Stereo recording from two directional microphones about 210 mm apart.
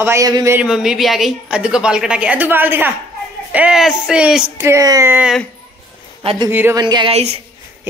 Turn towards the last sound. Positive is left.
turn(degrees=-25)  # may be behind; listen again after turning